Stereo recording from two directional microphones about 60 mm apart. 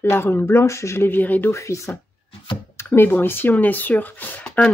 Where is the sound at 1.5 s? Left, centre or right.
Left.